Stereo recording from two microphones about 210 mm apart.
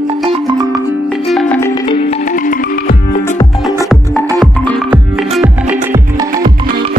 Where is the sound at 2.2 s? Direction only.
40° left (ahead or behind).